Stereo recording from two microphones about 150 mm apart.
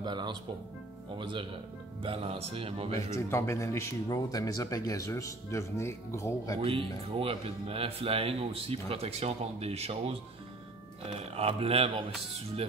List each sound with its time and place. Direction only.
0.0 s speech: 30° right (ahead or behind)
3.2 s speech: 20° left (ahead or behind)
6.6 s speech: 40° right (ahead or behind)